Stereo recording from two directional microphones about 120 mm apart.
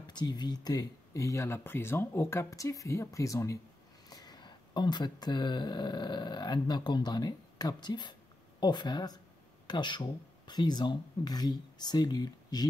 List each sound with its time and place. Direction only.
0.0 s speech: 35° left (ahead or behind)